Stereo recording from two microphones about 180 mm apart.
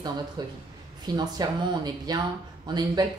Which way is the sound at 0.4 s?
25° right (ahead or behind).